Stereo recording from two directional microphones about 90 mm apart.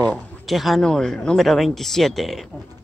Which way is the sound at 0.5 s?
Centre (ahead or behind).